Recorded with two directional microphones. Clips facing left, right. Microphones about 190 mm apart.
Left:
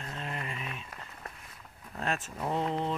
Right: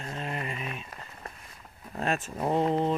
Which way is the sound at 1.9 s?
15° right (ahead or behind).